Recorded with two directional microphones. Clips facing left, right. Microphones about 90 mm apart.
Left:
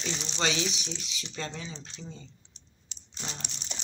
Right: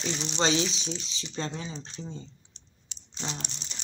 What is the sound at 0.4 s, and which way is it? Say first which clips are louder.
Speech: right 4 dB; 30° right (ahead or behind).